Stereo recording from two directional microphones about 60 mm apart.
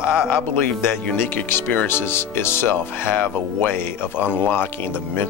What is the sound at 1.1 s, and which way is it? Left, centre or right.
Speech, left.